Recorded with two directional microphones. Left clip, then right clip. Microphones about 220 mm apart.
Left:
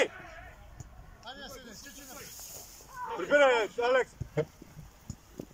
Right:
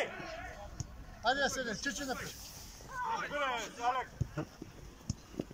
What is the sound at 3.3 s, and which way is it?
Speech, 45° left (ahead or behind).